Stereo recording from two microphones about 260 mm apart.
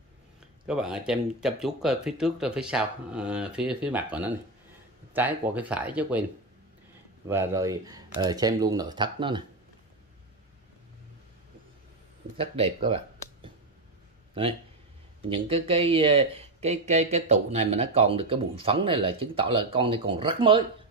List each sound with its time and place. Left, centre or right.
0.7 s speech: centre
7.2 s speech: centre
12.4 s speech: right
15.2 s speech: right